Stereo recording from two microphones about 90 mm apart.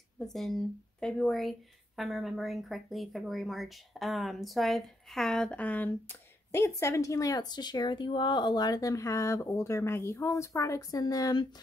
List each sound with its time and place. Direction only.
0.2 s speech: 5° left (ahead or behind); by 11.4 s 45° left (ahead or behind)